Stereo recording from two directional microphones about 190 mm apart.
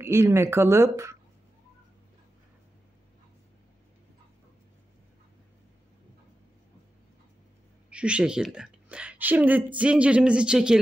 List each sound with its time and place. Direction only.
0.0 s speech: 15° right (ahead or behind)
7.9 s speech: 5° right (ahead or behind)